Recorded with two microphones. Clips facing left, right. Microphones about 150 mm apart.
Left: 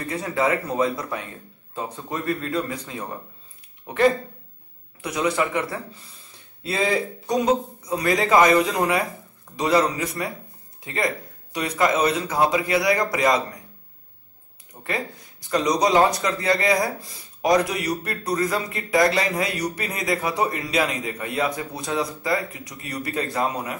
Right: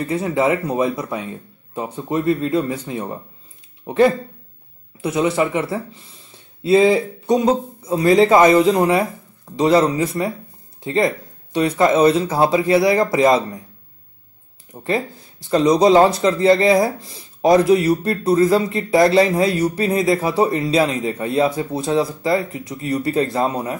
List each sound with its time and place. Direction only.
0.0 s speech: 25° right (ahead or behind)
5.0 s speech: 25° right (ahead or behind)
14.7 s speech: 20° right (ahead or behind)